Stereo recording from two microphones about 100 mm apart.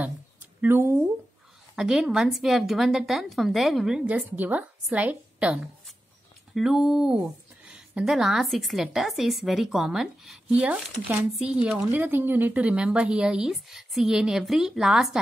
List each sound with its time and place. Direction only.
0.6 s speech: 25° right (ahead or behind)
1.8 s speech: 5° right (ahead or behind)